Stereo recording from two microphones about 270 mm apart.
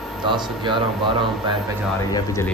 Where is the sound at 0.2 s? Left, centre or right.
Centre.